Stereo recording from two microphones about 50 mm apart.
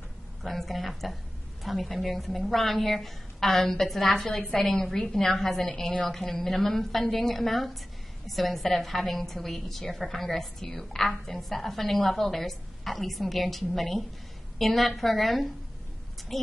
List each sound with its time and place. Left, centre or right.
0.4 s a woman's voice: centre